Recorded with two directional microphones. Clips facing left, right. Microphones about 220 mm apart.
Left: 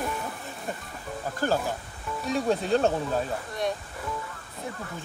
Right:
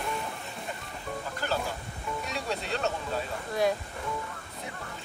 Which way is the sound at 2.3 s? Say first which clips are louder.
Left 12 dB; 45° left (ahead or behind).